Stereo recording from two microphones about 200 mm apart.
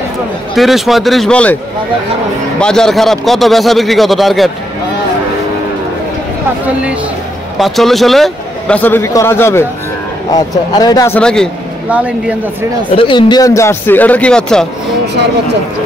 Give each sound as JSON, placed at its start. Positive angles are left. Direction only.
{"t": 0.6, "sound": "a man's voice", "side_deg": 0}
{"t": 2.6, "sound": "a man's voice", "side_deg": 5}
{"t": 7.5, "sound": "a man's voice", "side_deg": 0}
{"t": 11.1, "sound": "a man's voice", "side_deg": 5}
{"t": 12.9, "sound": "a man's voice", "side_deg": 25}